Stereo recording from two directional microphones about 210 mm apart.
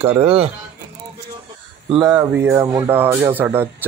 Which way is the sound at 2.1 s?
5° right (ahead or behind).